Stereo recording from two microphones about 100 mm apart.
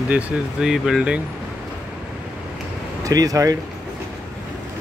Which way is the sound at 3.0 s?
35° right (ahead or behind).